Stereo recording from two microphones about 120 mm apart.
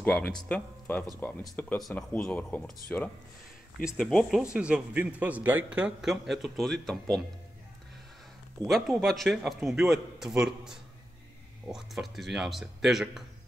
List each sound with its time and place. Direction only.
0.0 s a man's voice: 10° left (ahead or behind)
3.8 s a man's voice: 5° right (ahead or behind)
8.6 s a man's voice: centre (ahead or behind)